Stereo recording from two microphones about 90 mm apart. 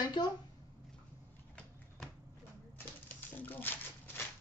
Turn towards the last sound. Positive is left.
turn(degrees=20)  # may be behind; listen again after turning